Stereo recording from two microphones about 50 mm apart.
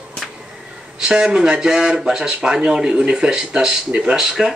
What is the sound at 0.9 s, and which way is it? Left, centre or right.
Speech, centre.